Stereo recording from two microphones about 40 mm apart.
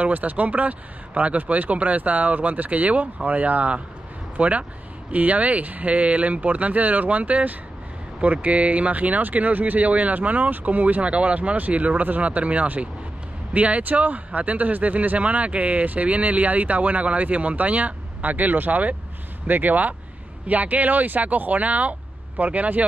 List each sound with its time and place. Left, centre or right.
0.0 s speech: right
11.1 s speech: right